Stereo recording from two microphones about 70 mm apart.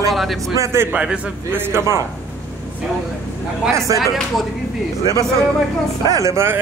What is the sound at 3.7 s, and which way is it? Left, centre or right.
Speech, right.